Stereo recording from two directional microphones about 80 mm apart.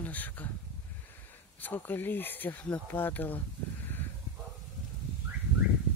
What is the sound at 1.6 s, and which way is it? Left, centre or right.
Speech, left.